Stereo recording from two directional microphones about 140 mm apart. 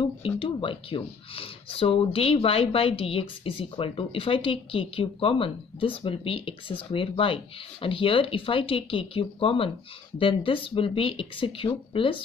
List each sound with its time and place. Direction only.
0.0 s speech: 35° left (ahead or behind)